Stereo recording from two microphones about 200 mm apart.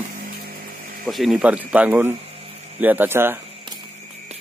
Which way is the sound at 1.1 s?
Centre (ahead or behind).